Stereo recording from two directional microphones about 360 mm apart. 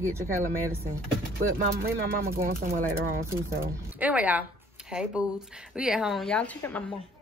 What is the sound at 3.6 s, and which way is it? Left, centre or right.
Speech, centre.